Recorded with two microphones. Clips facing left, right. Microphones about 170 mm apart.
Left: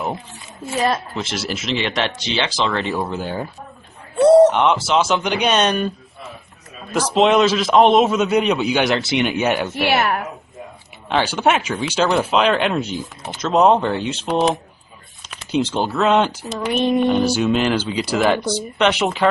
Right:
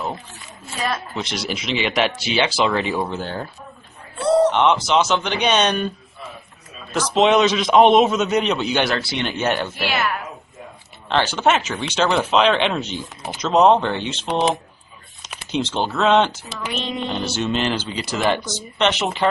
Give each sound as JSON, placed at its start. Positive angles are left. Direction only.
{"t": 1.1, "sound": "speech", "side_deg": 0}
{"t": 3.2, "sound": "speech", "side_deg": 10}
{"t": 4.5, "sound": "speech", "side_deg": 5}
{"t": 6.9, "sound": "speech", "side_deg": 10}
{"t": 8.8, "sound": "speech", "side_deg": 20}
{"t": 9.3, "sound": "speech", "side_deg": 0}
{"t": 9.9, "sound": "a woman's voice", "side_deg": 55}
{"t": 11.1, "sound": "speech", "side_deg": 10}
{"t": 16.7, "sound": "music", "side_deg": 55}
{"t": 17.2, "sound": "speech", "side_deg": 10}